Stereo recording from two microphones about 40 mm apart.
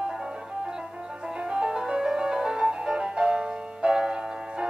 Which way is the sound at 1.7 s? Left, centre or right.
Centre.